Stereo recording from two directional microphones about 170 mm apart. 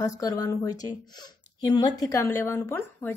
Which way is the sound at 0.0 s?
20° left (ahead or behind).